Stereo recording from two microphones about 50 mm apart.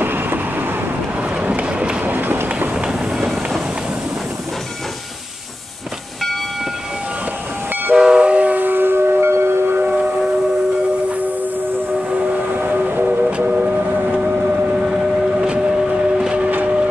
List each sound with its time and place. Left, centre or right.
0.0 s vehicle: right
1.5 s train: right
2.0 s run: right
2.7 s train: centre
7.9 s train: centre; by 9.6 s right
9.8 s train: right
12.1 s vehicle: right
14.8 s civil defense siren: centre
15.9 s vehicle: centre
16.4 s vehicle: right